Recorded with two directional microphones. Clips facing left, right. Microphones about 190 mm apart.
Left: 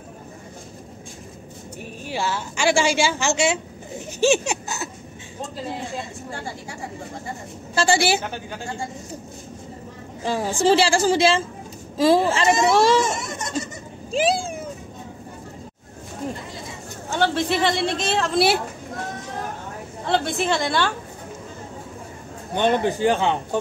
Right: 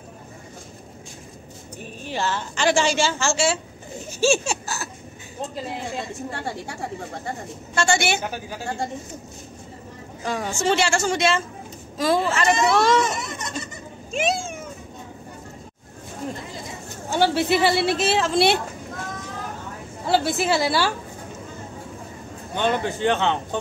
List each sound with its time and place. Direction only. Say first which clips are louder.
1.8 s a woman's voice: even; 10° left (ahead or behind)
7.7 s a woman's voice: left 2 dB; 30° left (ahead or behind)
8.2 s speech: right 1 dB; 10° right (ahead or behind)
10.2 s a woman's voice: left 4 dB; 30° left (ahead or behind)
17.1 s speech: right 2 dB; 10° right (ahead or behind)
20.1 s speech: right 1 dB; 5° right (ahead or behind)
22.5 s a woman's voice: left 3 dB; 15° left (ahead or behind)